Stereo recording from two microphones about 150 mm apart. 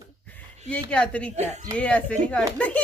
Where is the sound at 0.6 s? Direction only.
5° left (ahead or behind).